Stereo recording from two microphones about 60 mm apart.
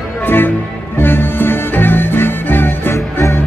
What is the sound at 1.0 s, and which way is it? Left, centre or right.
Music, left.